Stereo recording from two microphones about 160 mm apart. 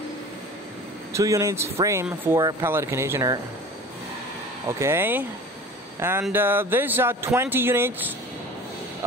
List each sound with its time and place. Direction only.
1.1 s speech: 20° right (ahead or behind)
4.6 s speech: 15° right (ahead or behind)